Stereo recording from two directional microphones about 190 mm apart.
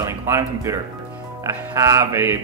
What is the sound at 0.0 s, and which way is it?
Speech, 15° right (ahead or behind).